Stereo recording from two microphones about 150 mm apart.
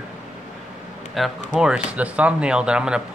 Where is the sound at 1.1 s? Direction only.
Centre (ahead or behind).